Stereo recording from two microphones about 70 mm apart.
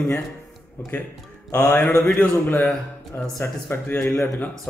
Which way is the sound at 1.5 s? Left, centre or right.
Left.